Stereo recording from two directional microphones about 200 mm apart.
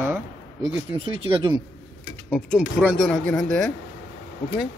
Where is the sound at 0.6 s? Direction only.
25° right (ahead or behind).